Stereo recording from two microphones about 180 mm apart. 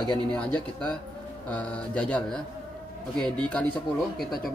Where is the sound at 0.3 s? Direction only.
5° left (ahead or behind).